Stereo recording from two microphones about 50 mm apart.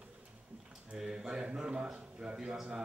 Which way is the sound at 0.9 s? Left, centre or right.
Centre.